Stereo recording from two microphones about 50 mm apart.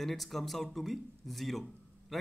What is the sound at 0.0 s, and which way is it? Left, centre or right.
Speech, centre.